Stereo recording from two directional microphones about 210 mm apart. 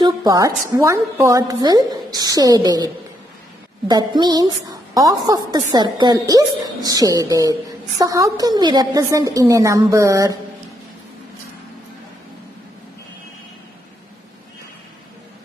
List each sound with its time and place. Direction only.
0.0 s a woman's voice: 20° right (ahead or behind)